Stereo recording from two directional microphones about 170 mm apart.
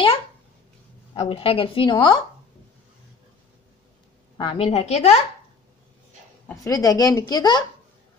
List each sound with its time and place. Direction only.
1.1 s a woman's voice: 35° left (ahead or behind)
4.4 s a woman's voice: 30° left (ahead or behind)
6.5 s a woman's voice: 20° left (ahead or behind)